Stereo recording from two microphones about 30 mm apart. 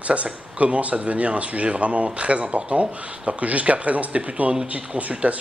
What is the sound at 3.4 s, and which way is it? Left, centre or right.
Speech, right.